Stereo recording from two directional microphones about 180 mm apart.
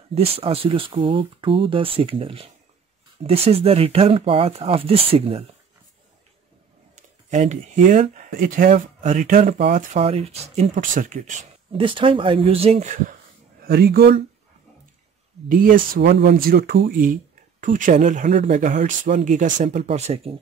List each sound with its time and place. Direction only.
0.1 s speech: 35° right (ahead or behind)
7.2 s speech: 40° right (ahead or behind)
10.7 s speech: 50° right (ahead or behind)
11.8 s speech: 30° right (ahead or behind)
13.7 s speech: 60° right (ahead or behind)
15.4 s speech: 50° right (ahead or behind)
16.0 s speech: 70° right (ahead or behind); by 20.3 s 35° right (ahead or behind)